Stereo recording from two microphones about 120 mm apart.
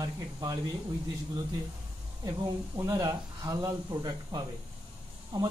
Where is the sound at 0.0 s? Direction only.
30° right (ahead or behind).